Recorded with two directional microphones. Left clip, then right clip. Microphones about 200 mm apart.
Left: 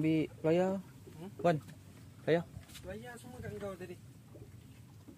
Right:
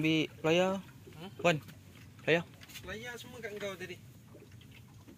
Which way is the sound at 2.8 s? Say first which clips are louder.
Right 4 dB; 40° left (ahead or behind).